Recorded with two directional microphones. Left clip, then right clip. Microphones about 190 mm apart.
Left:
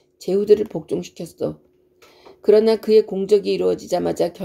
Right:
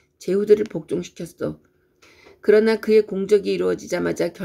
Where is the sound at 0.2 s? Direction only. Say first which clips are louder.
Left 1 dB; 15° right (ahead or behind).